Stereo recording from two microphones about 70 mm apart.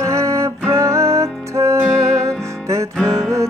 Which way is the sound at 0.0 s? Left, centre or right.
Right.